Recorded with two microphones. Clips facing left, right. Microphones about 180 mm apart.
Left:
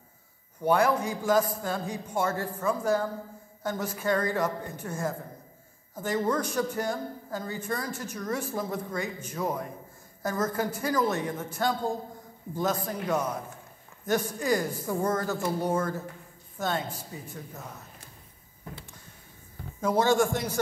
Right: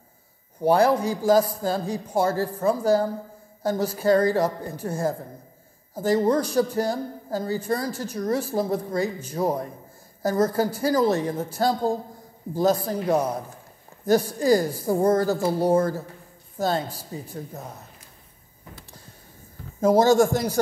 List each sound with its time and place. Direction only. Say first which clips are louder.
0.6 s speech: right 5 dB; 35° right (ahead or behind)
19.8 s speech: right 7 dB; 40° right (ahead or behind)